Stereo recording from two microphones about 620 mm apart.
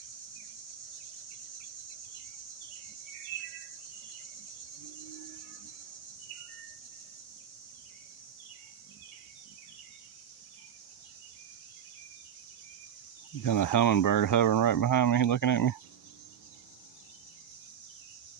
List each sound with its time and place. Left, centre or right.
13.4 s speech: left